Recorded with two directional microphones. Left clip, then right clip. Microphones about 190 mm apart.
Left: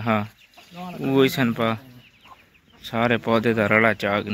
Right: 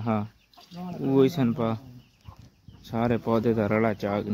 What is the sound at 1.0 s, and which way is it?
Speech, centre (ahead or behind).